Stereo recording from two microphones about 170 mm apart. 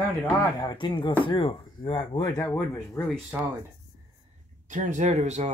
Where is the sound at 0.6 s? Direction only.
25° left (ahead or behind).